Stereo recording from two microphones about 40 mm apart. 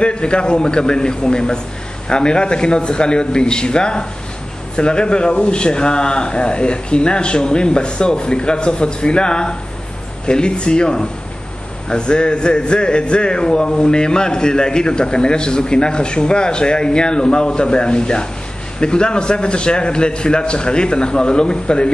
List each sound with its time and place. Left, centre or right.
0.0 s speech: left